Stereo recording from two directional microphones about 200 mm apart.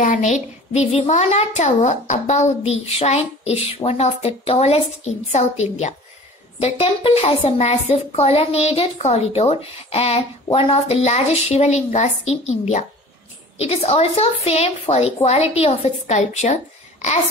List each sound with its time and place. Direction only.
0.0 s a woman's voice: 40° left (ahead or behind)